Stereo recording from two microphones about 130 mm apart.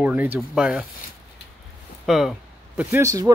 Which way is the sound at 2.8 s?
15° right (ahead or behind).